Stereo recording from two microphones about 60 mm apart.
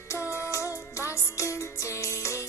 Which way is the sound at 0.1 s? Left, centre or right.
Left.